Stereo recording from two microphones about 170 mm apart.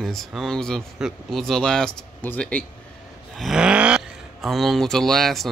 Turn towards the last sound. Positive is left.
turn(degrees=0)  # may be behind; listen again after turning